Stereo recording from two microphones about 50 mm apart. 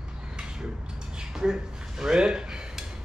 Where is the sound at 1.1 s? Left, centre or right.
Centre.